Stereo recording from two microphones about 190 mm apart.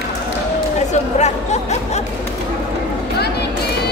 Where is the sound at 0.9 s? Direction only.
35° left (ahead or behind).